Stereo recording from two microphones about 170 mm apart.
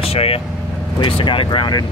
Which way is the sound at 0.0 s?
35° left (ahead or behind).